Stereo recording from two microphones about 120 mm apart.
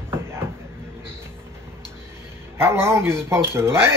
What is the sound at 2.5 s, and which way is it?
Speech, 20° right (ahead or behind).